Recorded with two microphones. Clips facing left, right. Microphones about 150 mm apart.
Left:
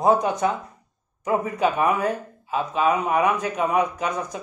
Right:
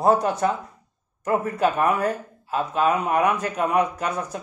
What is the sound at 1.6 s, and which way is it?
Speech, 5° left (ahead or behind).